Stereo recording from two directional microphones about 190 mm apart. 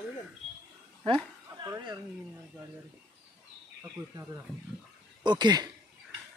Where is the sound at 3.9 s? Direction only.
15° right (ahead or behind).